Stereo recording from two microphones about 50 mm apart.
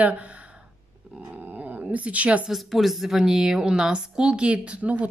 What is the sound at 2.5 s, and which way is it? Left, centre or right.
A woman's voice, centre.